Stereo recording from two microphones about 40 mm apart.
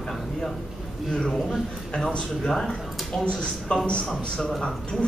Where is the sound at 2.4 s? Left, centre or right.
Centre.